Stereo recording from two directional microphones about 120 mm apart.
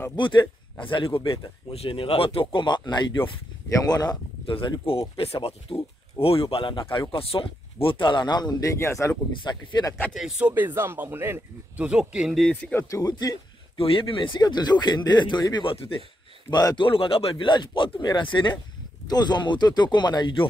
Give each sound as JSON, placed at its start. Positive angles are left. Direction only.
{"t": 0.1, "sound": "speech", "side_deg": 40}
{"t": 4.6, "sound": "speech", "side_deg": 50}
{"t": 8.7, "sound": "speech", "side_deg": 25}
{"t": 9.4, "sound": "speech", "side_deg": 40}
{"t": 10.1, "sound": "speech", "side_deg": -5}
{"t": 10.5, "sound": "speech", "side_deg": -15}
{"t": 12.7, "sound": "speech", "side_deg": 25}
{"t": 13.7, "sound": "speech", "side_deg": 50}
{"t": 16.4, "sound": "speech", "side_deg": 35}